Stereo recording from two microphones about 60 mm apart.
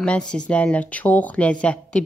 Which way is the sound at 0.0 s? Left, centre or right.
Centre.